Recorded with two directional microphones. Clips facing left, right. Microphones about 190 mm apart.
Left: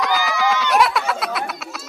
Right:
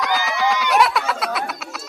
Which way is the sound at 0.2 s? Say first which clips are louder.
Left 1 dB; 20° right (ahead or behind).